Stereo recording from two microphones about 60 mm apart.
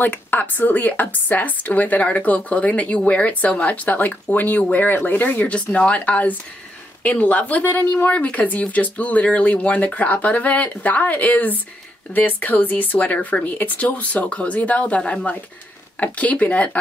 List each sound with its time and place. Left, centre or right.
0.0 s speech: left